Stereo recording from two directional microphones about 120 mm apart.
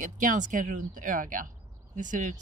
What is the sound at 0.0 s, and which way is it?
Speech, 90° right.